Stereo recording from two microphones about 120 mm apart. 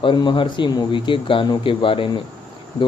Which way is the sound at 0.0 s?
40° left (ahead or behind).